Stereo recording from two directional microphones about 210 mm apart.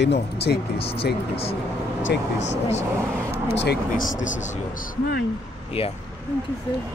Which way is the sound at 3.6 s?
45° left (ahead or behind).